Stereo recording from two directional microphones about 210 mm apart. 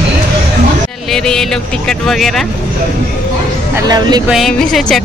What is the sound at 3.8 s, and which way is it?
Speech, 20° right (ahead or behind).